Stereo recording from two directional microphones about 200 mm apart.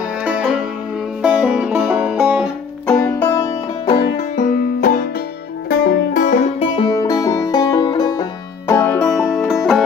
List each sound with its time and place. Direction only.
0.2 s music: 5° right (ahead or behind)
2.9 s music: 10° left (ahead or behind)
4.4 s music: 40° left (ahead or behind)
6.6 s music: 20° left (ahead or behind); by 9.6 s 5° left (ahead or behind)